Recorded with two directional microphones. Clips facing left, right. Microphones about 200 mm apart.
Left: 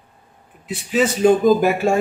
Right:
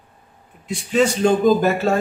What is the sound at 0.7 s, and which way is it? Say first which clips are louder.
A man's voice: right 1 dB; 5° left (ahead or behind).